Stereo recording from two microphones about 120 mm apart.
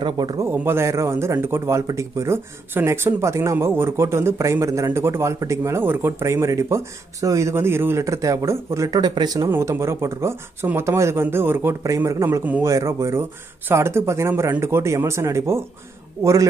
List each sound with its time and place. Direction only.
0.0 s a man's voice: 35° right (ahead or behind)
0.5 s a man's voice: 20° right (ahead or behind)
9.5 s a man's voice: 20° right (ahead or behind)